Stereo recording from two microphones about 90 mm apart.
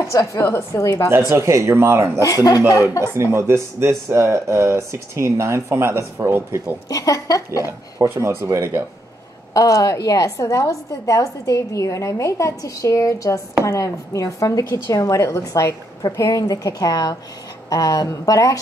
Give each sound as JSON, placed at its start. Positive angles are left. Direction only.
{"t": 0.0, "sound": "a woman's voice", "side_deg": 35}
{"t": 1.3, "sound": "speech", "side_deg": -30}
{"t": 2.2, "sound": "a woman's voice", "side_deg": 40}
{"t": 3.2, "sound": "speech", "side_deg": -30}
{"t": 6.9, "sound": "a woman's voice", "side_deg": 40}
{"t": 8.0, "sound": "speech", "side_deg": -30}
{"t": 9.5, "sound": "a woman's voice", "side_deg": 40}